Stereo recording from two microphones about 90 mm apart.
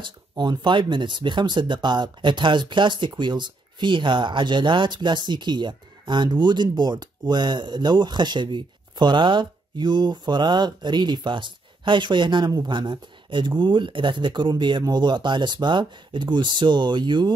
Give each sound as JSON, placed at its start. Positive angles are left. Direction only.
{"t": 0.0, "sound": "speech", "side_deg": -55}